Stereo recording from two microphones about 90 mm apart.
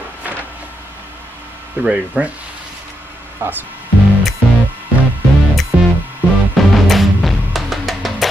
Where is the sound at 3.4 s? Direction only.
25° right (ahead or behind).